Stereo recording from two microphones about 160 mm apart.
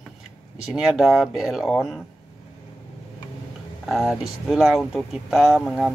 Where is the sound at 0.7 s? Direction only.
Centre (ahead or behind).